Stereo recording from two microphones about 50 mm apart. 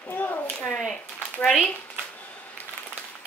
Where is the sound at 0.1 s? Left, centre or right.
Left.